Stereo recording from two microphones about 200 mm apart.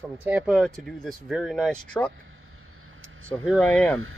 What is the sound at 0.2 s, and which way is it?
Speech, 5° right (ahead or behind).